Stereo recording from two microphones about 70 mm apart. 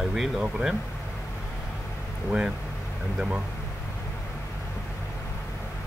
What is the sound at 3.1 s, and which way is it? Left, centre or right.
Speech, centre.